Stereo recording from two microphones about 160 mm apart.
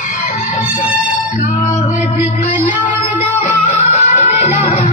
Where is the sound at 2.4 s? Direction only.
40° left (ahead or behind).